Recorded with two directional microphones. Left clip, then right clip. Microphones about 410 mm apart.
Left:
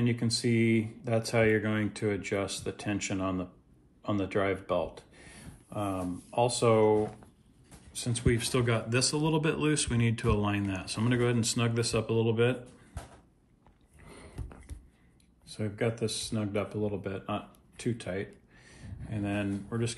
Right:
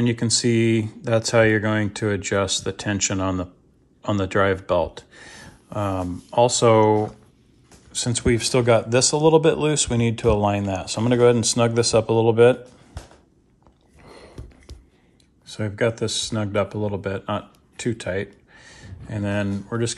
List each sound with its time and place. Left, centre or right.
0.0 s speech: right
15.4 s speech: centre